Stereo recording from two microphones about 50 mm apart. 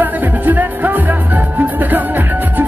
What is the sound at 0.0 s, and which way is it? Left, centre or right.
Music, right.